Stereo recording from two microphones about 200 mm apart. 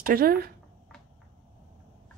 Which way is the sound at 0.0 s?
45° right (ahead or behind).